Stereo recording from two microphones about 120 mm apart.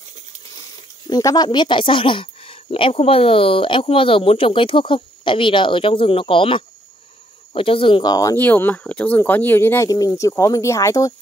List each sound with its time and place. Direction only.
1.0 s speech: 35° left (ahead or behind)
8.4 s speech: 15° left (ahead or behind)
9.8 s speech: 30° left (ahead or behind)